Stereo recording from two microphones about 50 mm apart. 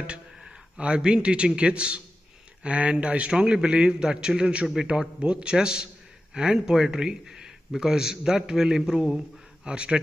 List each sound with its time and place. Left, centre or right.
0.0 s a man's voice: centre
9.7 s a man's voice: centre